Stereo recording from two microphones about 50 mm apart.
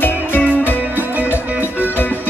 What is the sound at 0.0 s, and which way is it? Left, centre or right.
Music, left.